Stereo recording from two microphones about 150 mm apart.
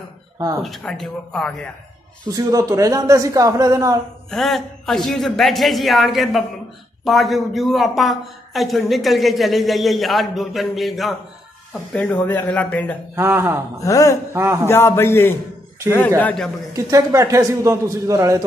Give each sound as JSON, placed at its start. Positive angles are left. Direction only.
{"t": 0.6, "sound": "a man's voice", "side_deg": 0}
{"t": 2.2, "sound": "speech", "side_deg": -25}
{"t": 4.3, "sound": "a man's voice", "side_deg": 0}
{"t": 11.9, "sound": "a man's voice", "side_deg": 10}
{"t": 13.1, "sound": "speech", "side_deg": -15}
{"t": 13.7, "sound": "speech", "side_deg": 20}
{"t": 14.3, "sound": "speech", "side_deg": -15}
{"t": 14.7, "sound": "a man's voice", "side_deg": 15}
{"t": 16.7, "sound": "speech", "side_deg": -20}